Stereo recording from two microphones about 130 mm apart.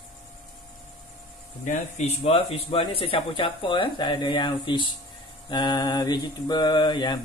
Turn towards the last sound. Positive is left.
turn(degrees=35)  # may be behind; listen again after turning